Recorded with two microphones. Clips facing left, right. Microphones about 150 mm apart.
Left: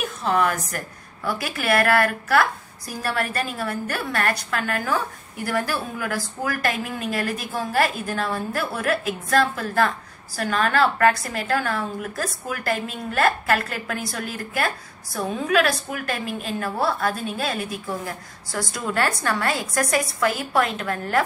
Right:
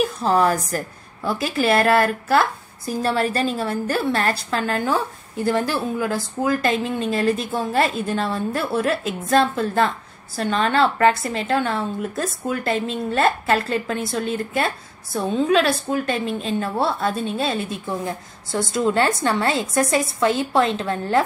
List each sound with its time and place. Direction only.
0.0 s a woman's voice: 35° right (ahead or behind)